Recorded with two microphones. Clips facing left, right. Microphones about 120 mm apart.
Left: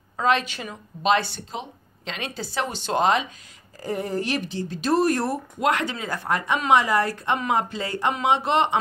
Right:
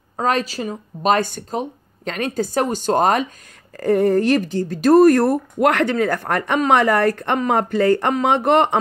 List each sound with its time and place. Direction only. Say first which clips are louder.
0.2 s speech: right 2 dB; 40° right (ahead or behind)
3.7 s speech: right 11 dB; 60° right (ahead or behind)